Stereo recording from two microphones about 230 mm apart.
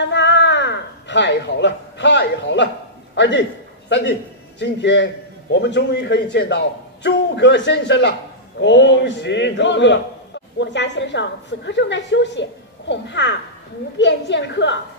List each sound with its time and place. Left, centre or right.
0.1 s a sound: left
3.2 s a man's voice: left
4.6 s a man's voice: left